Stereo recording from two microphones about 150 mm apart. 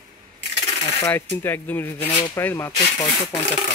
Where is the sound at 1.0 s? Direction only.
15° left (ahead or behind).